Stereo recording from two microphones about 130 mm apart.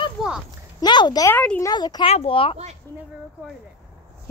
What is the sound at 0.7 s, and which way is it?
Speech, 35° left (ahead or behind).